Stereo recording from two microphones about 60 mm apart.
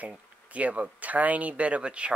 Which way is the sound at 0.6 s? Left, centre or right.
Right.